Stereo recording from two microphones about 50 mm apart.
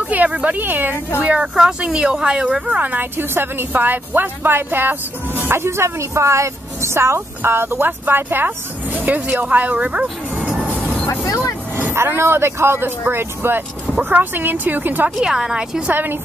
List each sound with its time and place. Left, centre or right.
0.1 s a sound: right
0.6 s speech: right
1.2 s speech: right
2.7 s speech: right
3.2 s a woman's voice: right
7.2 s speech: right
10.3 s music: right
11.1 s speech: left
11.9 s a woman's voice: right
15.1 s speech: centre
15.9 s speech: right